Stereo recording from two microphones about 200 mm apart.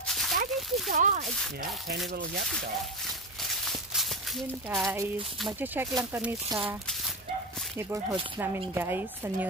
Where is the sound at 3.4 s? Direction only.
Centre (ahead or behind).